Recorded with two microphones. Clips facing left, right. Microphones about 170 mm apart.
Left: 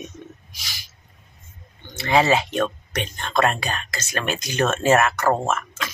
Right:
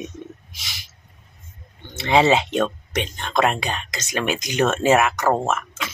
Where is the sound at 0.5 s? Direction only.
20° right (ahead or behind).